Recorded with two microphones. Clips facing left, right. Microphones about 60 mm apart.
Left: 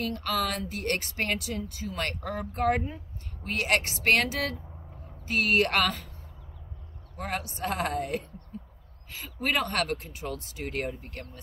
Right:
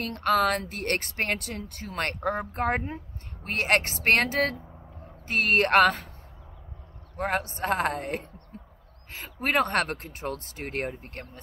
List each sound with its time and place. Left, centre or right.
0.0 s speech: right
7.2 s speech: right
8.5 s a sound: right
9.1 s speech: right